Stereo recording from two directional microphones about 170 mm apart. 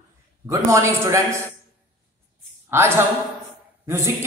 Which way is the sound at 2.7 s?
15° right (ahead or behind).